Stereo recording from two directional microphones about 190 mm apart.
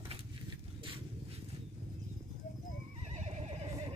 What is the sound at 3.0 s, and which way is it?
Neigh, 35° right (ahead or behind).